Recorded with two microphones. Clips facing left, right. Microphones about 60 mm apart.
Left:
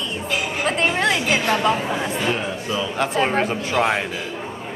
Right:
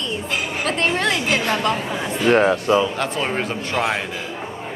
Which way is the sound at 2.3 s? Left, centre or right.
Right.